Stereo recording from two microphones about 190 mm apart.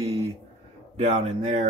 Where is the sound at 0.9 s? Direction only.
40° right (ahead or behind).